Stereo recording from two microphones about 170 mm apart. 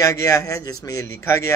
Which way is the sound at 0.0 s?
20° left (ahead or behind).